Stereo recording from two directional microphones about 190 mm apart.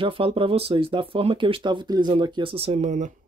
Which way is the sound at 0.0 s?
30° right (ahead or behind).